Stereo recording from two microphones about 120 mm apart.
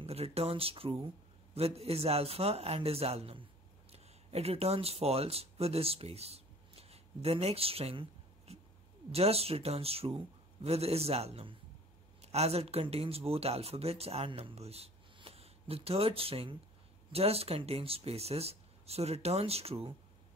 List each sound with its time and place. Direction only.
0.0 s speech: 55° right (ahead or behind)